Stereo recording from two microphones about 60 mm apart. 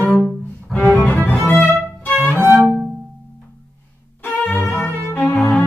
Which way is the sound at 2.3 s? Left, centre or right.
Centre.